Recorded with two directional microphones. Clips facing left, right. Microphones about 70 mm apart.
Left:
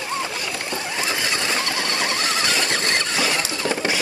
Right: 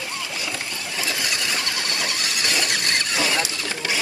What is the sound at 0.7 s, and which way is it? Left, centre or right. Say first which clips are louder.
Vehicle: left 3 dB; left.